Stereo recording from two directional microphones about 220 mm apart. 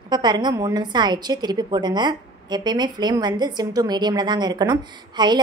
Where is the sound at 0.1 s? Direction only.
20° right (ahead or behind).